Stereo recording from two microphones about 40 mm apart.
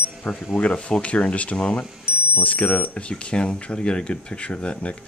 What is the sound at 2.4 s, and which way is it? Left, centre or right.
Speech, left.